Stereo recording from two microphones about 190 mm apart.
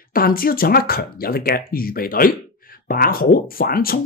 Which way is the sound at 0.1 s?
50° left (ahead or behind).